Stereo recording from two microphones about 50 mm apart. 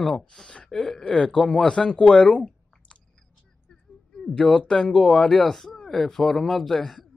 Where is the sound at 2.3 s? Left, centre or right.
Left.